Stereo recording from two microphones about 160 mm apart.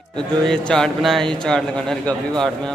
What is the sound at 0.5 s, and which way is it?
Speech, 5° left (ahead or behind).